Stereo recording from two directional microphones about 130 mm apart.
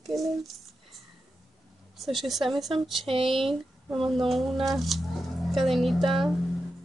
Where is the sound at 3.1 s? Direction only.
45° right (ahead or behind).